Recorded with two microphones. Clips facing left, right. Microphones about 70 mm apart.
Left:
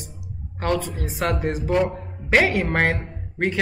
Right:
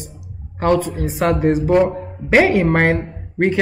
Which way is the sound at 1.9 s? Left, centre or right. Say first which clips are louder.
Right 5 dB; centre.